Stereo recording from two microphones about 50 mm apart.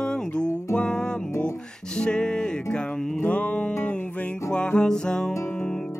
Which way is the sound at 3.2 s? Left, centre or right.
Left.